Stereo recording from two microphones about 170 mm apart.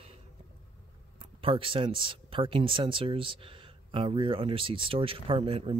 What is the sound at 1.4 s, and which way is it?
Speech, 30° right (ahead or behind).